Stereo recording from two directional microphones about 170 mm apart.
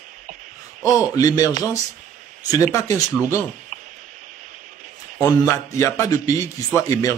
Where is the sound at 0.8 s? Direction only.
20° left (ahead or behind).